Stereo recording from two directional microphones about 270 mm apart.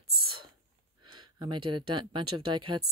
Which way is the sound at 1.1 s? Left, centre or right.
Centre.